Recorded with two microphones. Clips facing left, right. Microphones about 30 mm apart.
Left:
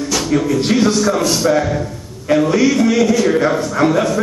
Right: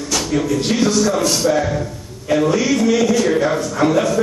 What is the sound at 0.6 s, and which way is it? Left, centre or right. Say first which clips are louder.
A man's voice: left 2 dB; centre.